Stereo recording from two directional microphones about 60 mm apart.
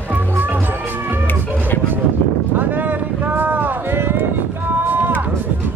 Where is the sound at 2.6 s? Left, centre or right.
Right.